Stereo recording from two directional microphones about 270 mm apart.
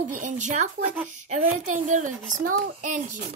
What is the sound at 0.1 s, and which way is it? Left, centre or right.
Speech, right.